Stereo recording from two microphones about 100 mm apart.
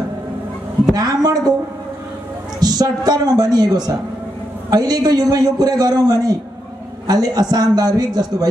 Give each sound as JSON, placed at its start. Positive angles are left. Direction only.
{"t": 0.9, "sound": "a woman's voice", "side_deg": -40}
{"t": 2.6, "sound": "a man's voice", "side_deg": -40}